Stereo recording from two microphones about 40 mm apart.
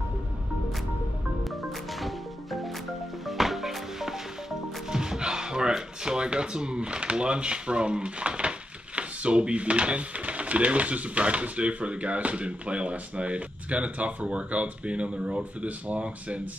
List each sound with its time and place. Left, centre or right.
2.0 s music: centre
4.9 s speech: centre; by 16.4 s right